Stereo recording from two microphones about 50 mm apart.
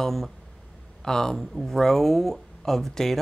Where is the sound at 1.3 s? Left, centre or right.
Centre.